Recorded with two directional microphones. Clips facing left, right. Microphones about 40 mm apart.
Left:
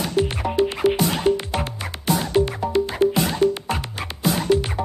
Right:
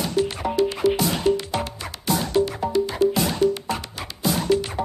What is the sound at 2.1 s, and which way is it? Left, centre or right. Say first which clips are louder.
Music: even; left.